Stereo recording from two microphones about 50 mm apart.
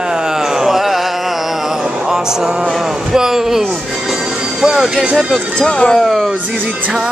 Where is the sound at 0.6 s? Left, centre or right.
Centre.